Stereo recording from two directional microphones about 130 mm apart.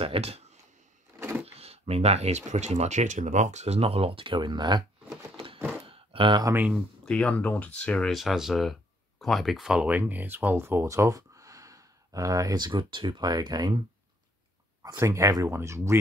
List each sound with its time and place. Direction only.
0.0 s speech: 50° right (ahead or behind)
1.4 s speech: 50° right (ahead or behind); by 4.8 s 35° right (ahead or behind)
5.9 s a sound: 45° right (ahead or behind)
6.7 s speech: 5° left (ahead or behind); by 16.0 s 20° right (ahead or behind)